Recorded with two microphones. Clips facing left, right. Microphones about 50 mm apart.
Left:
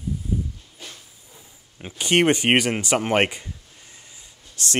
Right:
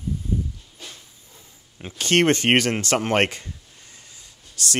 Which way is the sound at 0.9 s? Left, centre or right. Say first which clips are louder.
Even; centre.